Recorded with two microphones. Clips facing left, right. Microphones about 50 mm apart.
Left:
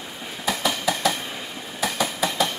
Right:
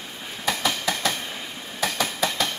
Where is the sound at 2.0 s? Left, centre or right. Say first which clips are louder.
Left 3 dB; left.